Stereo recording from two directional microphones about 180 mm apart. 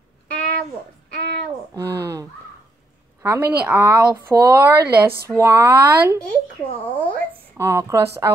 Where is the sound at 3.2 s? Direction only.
15° right (ahead or behind).